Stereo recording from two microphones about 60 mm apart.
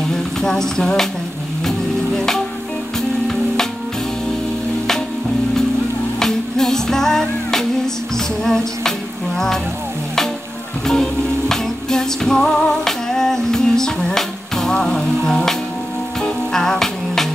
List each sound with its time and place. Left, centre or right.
0.4 s a sound: centre
2.1 s music: centre
6.1 s music: centre
10.9 s music: centre